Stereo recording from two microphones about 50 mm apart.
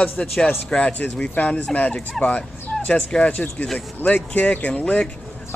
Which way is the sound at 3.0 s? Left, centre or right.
Centre.